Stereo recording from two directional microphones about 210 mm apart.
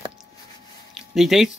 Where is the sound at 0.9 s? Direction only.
Centre (ahead or behind).